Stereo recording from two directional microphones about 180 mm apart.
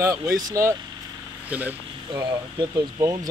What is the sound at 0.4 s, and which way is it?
Speech, 20° right (ahead or behind).